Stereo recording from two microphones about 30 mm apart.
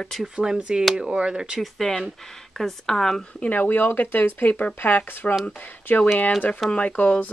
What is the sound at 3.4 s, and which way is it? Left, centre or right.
Speech, left.